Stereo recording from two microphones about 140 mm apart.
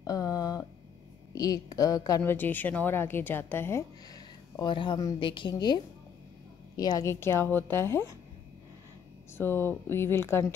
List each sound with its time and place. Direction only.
0.0 s a sound: 25° left (ahead or behind)
1.3 s a woman's voice: 25° left (ahead or behind)
2.3 s speech: 15° left (ahead or behind)
4.1 s a woman's voice: 30° left (ahead or behind)
6.8 s speech: 25° left (ahead or behind)
9.4 s speech: 15° left (ahead or behind)